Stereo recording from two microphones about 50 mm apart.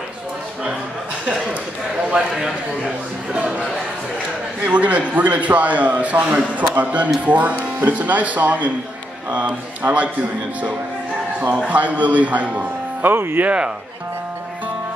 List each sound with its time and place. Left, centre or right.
2.1 s a man's voice: centre
3.3 s a man's voice: right
4.6 s a man's voice: right
11.5 s a man's voice: right
13.0 s speech: right